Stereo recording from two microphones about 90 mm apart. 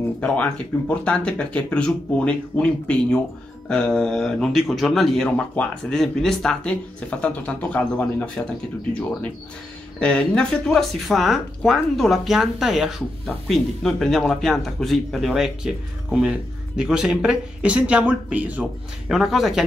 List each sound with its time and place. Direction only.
0.2 s speech: 15° left (ahead or behind)
9.9 s speech: 10° left (ahead or behind); by 19.1 s 15° right (ahead or behind)
19.1 s speech: 5° right (ahead or behind)